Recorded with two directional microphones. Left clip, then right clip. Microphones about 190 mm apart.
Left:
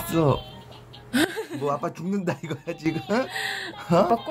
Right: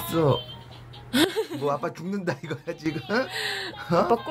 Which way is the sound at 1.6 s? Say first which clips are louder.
Even; 15° left (ahead or behind).